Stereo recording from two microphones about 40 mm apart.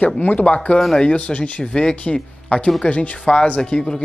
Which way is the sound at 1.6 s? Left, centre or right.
Left.